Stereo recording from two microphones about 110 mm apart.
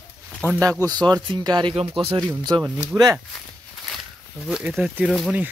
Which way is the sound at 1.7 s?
55° right (ahead or behind).